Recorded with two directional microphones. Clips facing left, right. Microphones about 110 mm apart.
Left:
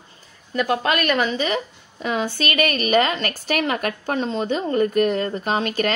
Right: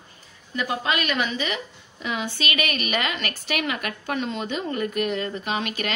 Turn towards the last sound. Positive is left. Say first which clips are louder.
# left 6 dB
turn(degrees=40)  # may be behind; listen again after turning